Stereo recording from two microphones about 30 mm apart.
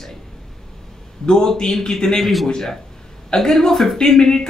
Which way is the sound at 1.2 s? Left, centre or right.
Centre.